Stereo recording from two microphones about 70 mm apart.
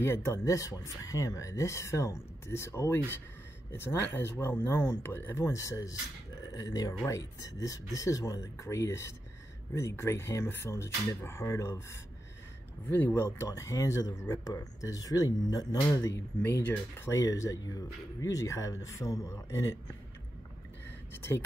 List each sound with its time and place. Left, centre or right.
0.0 s speech: left
0.5 s speech: left
12.8 s speech: left
13.6 s speech: left
14.4 s speech: left
16.4 s speech: left
17.0 s speech: left
21.1 s speech: left